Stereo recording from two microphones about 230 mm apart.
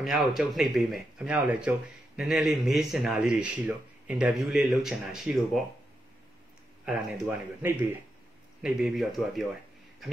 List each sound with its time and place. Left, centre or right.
0.0 s speech: centre
6.9 s speech: centre